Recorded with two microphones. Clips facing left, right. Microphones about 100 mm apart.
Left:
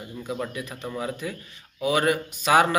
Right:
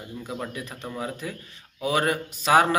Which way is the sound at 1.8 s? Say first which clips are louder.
Left 2 dB; 35° right (ahead or behind).